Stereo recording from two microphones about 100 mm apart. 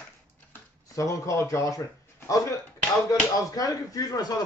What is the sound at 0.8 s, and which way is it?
Speech, 35° left (ahead or behind).